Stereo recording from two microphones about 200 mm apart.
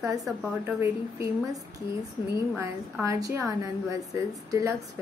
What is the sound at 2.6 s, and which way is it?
A woman's voice, 15° right (ahead or behind).